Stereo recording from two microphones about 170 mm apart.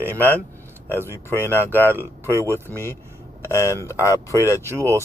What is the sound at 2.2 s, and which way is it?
Speech, 15° right (ahead or behind).